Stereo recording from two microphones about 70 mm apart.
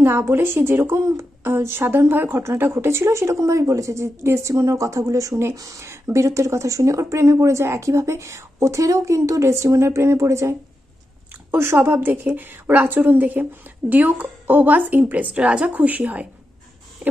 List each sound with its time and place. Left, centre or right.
0.0 s speech: right
11.5 s speech: right
17.0 s a sound: right